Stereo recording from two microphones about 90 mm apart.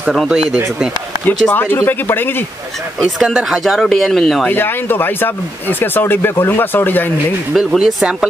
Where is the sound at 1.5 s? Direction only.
25° left (ahead or behind).